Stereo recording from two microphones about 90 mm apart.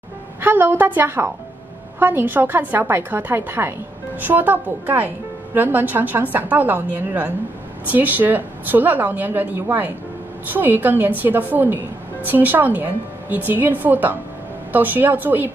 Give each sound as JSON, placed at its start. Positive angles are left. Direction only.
{"t": 0.4, "sound": "a woman's voice", "side_deg": -20}